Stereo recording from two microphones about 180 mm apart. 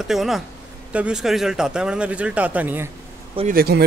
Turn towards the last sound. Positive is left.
turn(degrees=-60)  # may be behind; listen again after turning